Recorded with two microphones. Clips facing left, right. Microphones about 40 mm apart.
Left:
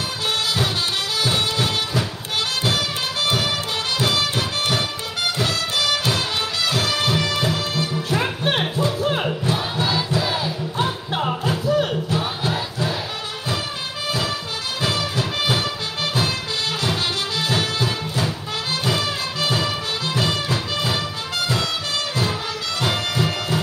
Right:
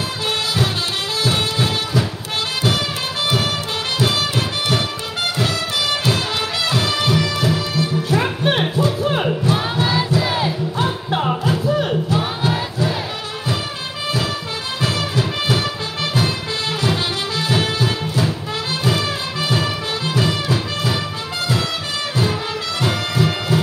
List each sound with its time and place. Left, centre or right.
4.1 s music: right
8.2 s music: centre
12.2 s a sound: centre
17.6 s music: centre
23.1 s music: centre